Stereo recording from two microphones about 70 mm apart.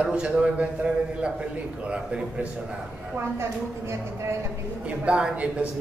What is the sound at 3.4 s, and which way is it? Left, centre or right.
A woman's voice, right.